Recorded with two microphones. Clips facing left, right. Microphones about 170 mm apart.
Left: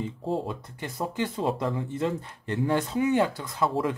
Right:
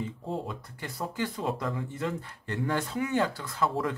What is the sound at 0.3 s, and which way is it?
Speech, 25° left (ahead or behind).